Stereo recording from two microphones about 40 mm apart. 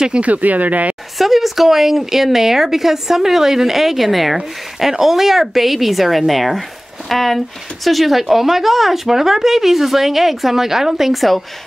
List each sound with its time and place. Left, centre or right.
0.2 s speech: right
1.1 s speech: centre